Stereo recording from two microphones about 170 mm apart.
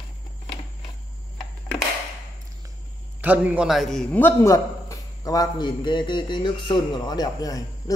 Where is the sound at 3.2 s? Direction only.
10° right (ahead or behind).